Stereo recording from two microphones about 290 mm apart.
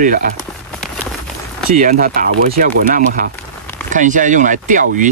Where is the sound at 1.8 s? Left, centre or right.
Right.